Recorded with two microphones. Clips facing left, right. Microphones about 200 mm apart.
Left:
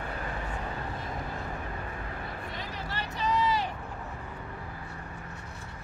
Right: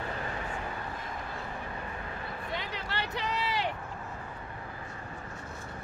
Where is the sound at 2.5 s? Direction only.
70° right (ahead or behind).